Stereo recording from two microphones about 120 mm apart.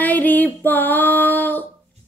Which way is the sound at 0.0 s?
15° left (ahead or behind).